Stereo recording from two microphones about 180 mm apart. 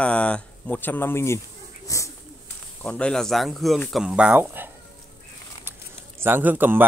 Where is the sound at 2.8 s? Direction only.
5° left (ahead or behind); by 4.7 s 10° right (ahead or behind).